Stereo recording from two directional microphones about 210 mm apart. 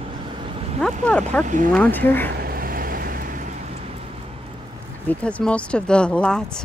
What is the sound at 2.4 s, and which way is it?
Vehicle, 45° right (ahead or behind).